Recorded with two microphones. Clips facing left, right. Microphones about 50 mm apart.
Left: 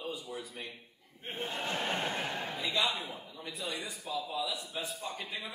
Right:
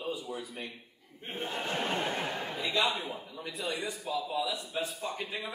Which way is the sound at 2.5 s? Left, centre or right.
Right.